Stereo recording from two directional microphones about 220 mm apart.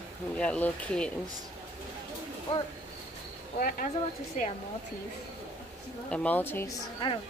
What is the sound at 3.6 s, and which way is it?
Speech, 40° left (ahead or behind).